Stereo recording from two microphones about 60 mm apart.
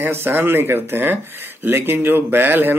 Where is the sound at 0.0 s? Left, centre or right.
Right.